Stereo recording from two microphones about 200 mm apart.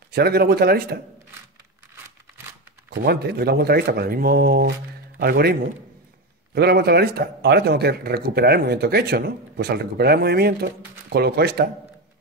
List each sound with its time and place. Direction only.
0.1 s speech: 50° right (ahead or behind)
2.9 s speech: 55° right (ahead or behind)